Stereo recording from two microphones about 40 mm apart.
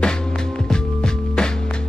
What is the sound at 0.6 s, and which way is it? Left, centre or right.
Music, centre.